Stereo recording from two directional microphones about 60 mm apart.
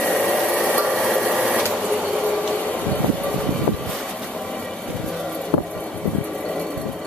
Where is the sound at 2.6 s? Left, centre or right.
Left.